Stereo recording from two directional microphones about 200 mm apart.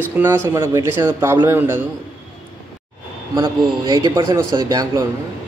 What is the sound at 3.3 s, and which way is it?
A man's voice, 20° right (ahead or behind).